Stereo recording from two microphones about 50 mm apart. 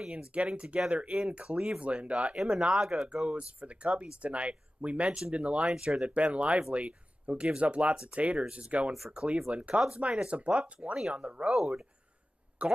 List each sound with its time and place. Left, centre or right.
0.0 s speech: centre
2.3 s speech: centre
3.3 s speech: right
5.7 s speech: centre
11.5 s speech: centre
12.6 s speech: right